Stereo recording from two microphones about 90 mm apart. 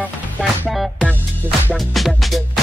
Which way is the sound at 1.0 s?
20° left (ahead or behind).